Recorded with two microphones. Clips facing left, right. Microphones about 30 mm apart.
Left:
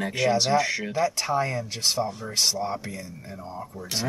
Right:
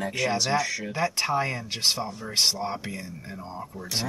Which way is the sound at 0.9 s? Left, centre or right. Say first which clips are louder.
Even; right.